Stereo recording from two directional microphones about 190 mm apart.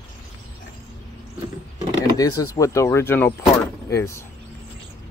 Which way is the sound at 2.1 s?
20° left (ahead or behind).